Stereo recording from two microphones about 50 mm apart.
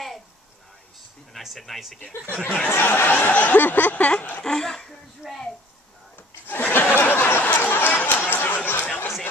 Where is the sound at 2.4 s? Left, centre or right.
Left.